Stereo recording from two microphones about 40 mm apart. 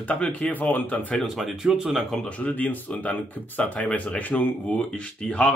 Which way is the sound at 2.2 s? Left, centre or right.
Left.